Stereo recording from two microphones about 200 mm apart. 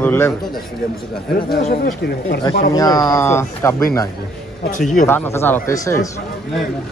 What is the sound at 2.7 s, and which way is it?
Speech, 20° left (ahead or behind).